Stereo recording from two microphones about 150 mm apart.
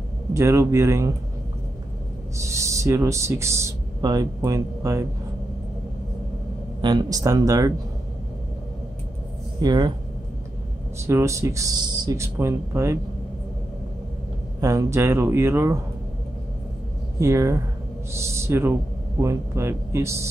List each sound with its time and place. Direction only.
0.3 s speech: 20° right (ahead or behind)
2.3 s speech: 20° right (ahead or behind)
6.8 s speech: 30° right (ahead or behind)
9.6 s speech: 30° right (ahead or behind)
11.0 s speech: 20° right (ahead or behind)
14.6 s speech: 20° right (ahead or behind)
17.2 s speech: 20° right (ahead or behind)